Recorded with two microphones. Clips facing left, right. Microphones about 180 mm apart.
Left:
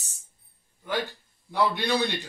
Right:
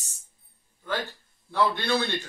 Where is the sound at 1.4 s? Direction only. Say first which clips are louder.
Even; 15° left (ahead or behind).